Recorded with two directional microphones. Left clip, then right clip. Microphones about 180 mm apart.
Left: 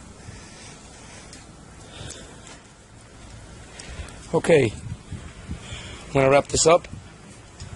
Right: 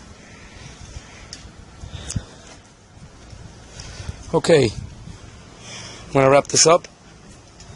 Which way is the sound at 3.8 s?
15° right (ahead or behind).